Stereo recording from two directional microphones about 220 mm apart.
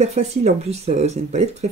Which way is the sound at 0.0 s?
30° right (ahead or behind).